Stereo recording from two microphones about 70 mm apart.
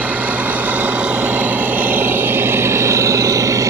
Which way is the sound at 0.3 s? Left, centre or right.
Right.